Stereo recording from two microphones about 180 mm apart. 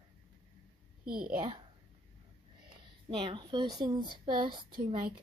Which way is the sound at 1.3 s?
30° right (ahead or behind).